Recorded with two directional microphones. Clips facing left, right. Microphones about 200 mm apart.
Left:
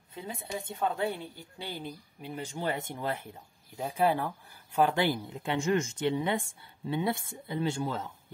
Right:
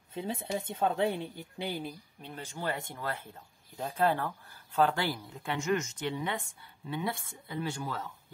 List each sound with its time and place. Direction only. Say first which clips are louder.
0.1 s speech: right 4 dB; 25° right (ahead or behind)
2.2 s speech: left 3 dB; 15° left (ahead or behind)